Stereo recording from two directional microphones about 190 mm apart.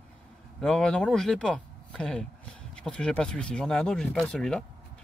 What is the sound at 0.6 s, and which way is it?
Speech, 5° left (ahead or behind).